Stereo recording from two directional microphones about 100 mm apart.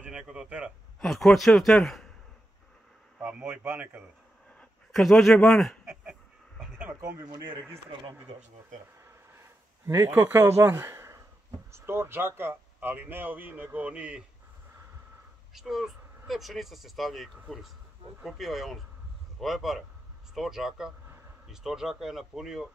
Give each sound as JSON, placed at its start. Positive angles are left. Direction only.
{"t": 0.0, "sound": "a man's voice", "side_deg": -10}
{"t": 1.0, "sound": "speech", "side_deg": 0}
{"t": 3.2, "sound": "a man's voice", "side_deg": -15}
{"t": 4.6, "sound": "speech", "side_deg": 5}
{"t": 7.4, "sound": "a man's voice", "side_deg": -20}
{"t": 9.0, "sound": "a sound", "side_deg": -25}
{"t": 10.1, "sound": "a man's voice", "side_deg": -20}
{"t": 15.5, "sound": "speech", "side_deg": -5}